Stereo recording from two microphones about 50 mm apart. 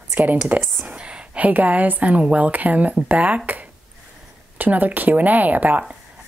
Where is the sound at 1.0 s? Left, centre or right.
Right.